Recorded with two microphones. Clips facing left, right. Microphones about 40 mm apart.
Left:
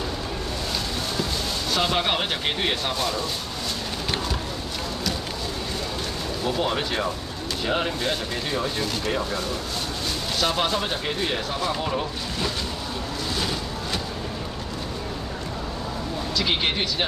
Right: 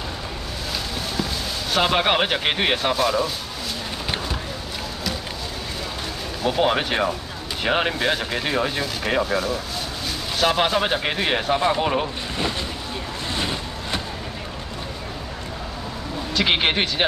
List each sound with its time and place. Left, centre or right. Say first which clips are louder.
1.9 s speech: right 4 dB; right
2.9 s speech: right 6 dB; centre
6.4 s speech: right 5 dB; right
8.0 s speech: right 4 dB; right
9.2 s speech: right 5 dB; centre
10.6 s speech: right 4 dB; right
13.3 s boat: right 2 dB; right
16.3 s speech: right 5 dB; right